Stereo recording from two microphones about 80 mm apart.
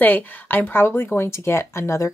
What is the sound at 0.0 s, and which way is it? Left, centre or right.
Speech, left.